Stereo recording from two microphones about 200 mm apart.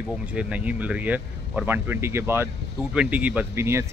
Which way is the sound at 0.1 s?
5° right (ahead or behind).